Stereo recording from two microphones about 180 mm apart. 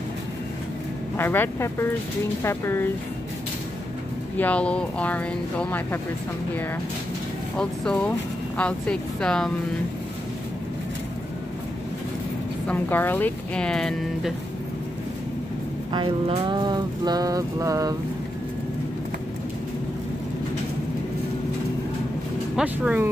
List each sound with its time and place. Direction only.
1.1 s speech: 10° left (ahead or behind)
4.4 s speech: 5° left (ahead or behind)
7.5 s speech: 5° left (ahead or behind)
12.6 s speech: 10° left (ahead or behind)
15.9 s a sound: 25° right (ahead or behind)
22.6 s speech: 5° right (ahead or behind)